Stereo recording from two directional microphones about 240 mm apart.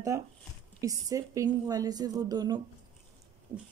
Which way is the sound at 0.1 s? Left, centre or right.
Centre.